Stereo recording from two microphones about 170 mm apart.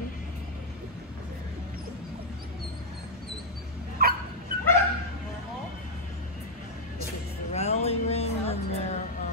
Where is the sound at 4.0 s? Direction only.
65° right (ahead or behind).